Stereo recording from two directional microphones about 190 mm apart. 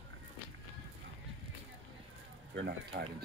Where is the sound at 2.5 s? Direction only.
60° right (ahead or behind).